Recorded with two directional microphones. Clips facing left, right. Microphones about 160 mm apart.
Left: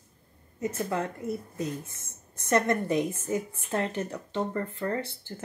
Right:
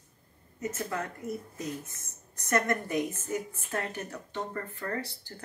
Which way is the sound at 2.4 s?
25° left (ahead or behind).